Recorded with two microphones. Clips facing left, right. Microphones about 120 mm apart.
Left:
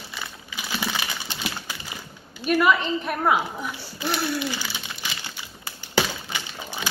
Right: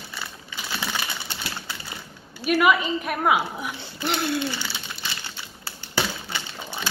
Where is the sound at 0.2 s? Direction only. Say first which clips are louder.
Even; 15° left (ahead or behind).